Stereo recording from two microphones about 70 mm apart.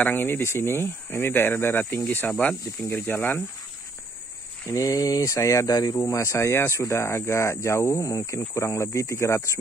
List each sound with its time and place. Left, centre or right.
0.0 s speech: left
4.7 s speech: left
6.0 s speech: left
8.1 s speech: left
8.4 s speech: left